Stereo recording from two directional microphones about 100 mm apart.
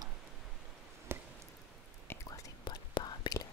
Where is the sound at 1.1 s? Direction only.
25° right (ahead or behind).